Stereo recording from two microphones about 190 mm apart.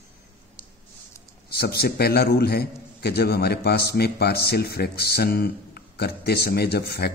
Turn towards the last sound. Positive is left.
turn(degrees=55)  # may be behind; listen again after turning